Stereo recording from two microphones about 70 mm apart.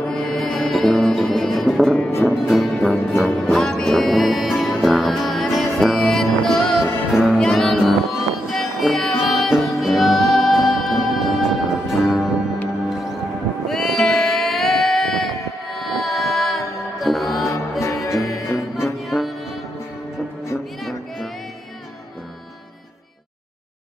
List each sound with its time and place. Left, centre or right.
0.1 s music: centre
13.7 s a sound: centre
15.4 s music: centre
17.5 s music: left
19.0 s music: centre